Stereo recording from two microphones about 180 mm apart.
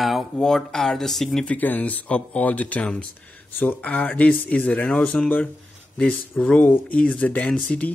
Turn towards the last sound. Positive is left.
turn(degrees=5)  # may be behind; listen again after turning